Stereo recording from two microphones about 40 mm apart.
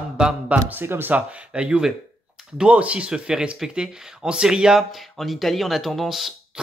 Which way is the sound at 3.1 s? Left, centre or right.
Right.